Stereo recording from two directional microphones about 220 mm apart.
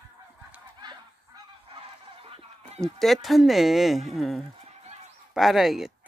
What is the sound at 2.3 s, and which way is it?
Goose, 25° right (ahead or behind).